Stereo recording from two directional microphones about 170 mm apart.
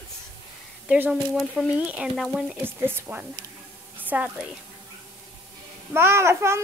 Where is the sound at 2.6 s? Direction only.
15° right (ahead or behind).